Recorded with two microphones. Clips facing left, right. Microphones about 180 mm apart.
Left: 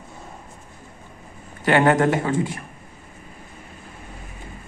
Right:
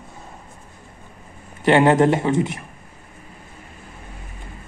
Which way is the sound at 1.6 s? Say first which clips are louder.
Right 3 dB; 25° right (ahead or behind).